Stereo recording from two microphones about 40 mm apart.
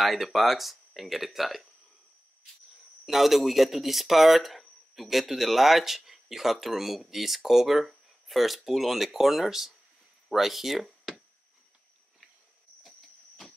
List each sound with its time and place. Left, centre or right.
0.0 s speech: centre
3.1 s speech: centre